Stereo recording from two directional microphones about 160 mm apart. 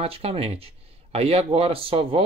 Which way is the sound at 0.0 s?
40° right (ahead or behind).